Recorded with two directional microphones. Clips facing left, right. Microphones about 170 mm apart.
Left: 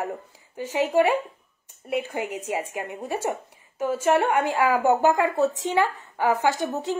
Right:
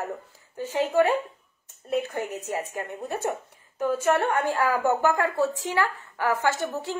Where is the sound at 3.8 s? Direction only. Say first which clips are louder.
Left 2 dB; 10° left (ahead or behind).